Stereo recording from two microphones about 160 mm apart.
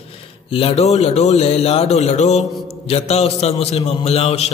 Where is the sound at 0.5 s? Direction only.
40° left (ahead or behind).